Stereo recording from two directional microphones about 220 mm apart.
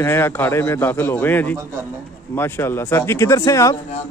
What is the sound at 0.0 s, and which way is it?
A man's voice, 10° left (ahead or behind).